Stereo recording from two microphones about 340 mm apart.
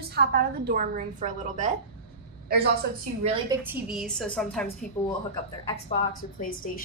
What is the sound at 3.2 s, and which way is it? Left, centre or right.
A woman's voice, centre.